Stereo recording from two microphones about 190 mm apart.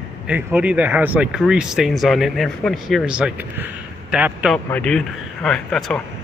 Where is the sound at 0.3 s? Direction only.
5° right (ahead or behind).